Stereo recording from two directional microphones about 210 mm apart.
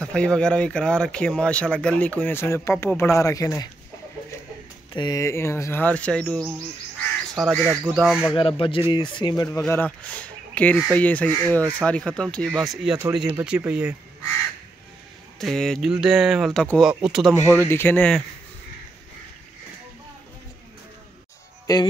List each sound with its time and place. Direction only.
0.0 s speech: 5° left (ahead or behind)
4.9 s speech: 20° left (ahead or behind); by 8.4 s centre (ahead or behind)
8.4 s speech: 25° left (ahead or behind)
9.6 s speech: 5° left (ahead or behind)
15.3 s speech: centre (ahead or behind)
17.4 s speech: 10° left (ahead or behind)
21.7 s speech: 20° left (ahead or behind)